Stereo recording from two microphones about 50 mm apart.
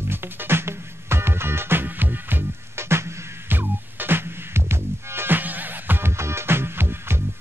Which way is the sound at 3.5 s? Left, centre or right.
Right.